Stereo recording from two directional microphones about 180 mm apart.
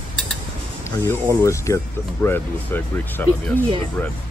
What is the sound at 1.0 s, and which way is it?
Speech, 15° left (ahead or behind).